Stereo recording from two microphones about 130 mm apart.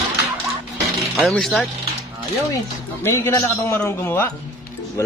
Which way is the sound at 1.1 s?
Centre (ahead or behind).